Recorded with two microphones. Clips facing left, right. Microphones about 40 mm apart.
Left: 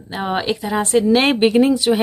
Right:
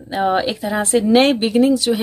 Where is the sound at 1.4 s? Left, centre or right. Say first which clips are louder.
Left 1 dB; left.